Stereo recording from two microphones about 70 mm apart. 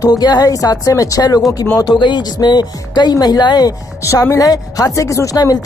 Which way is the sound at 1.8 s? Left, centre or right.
Left.